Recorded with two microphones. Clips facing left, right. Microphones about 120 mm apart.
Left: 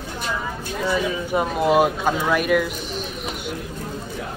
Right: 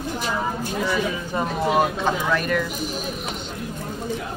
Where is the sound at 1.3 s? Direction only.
10° left (ahead or behind).